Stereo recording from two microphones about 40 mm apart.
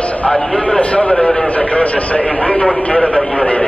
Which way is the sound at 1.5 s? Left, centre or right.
Left.